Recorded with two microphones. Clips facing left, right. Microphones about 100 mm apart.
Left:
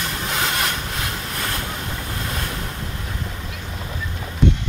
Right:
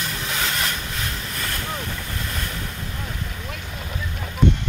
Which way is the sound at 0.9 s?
50° left (ahead or behind).